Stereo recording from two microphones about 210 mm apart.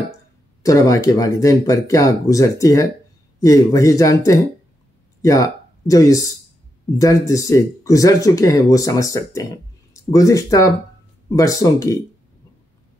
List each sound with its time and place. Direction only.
0.6 s speech: 15° left (ahead or behind)